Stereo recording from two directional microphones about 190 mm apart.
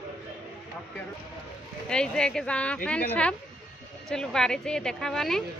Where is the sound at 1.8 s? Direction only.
5° left (ahead or behind).